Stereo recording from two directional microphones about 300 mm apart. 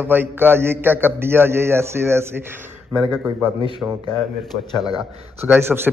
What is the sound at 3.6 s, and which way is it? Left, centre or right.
Speech, centre.